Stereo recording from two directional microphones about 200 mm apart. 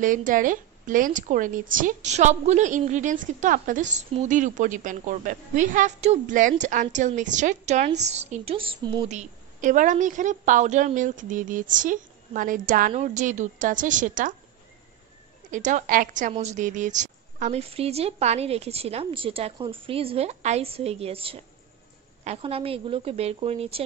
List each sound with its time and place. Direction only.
0.0 s a woman's voice: 40° right (ahead or behind)
15.5 s a woman's voice: 40° right (ahead or behind)